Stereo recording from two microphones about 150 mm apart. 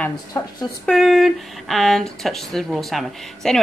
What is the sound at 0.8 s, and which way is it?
Speech, centre (ahead or behind).